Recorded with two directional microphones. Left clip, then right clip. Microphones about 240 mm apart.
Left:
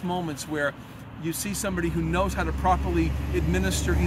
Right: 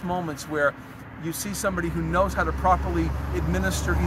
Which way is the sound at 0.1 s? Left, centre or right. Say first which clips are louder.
Right 2 dB; centre.